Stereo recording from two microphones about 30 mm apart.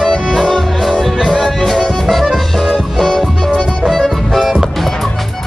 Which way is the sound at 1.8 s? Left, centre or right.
Left.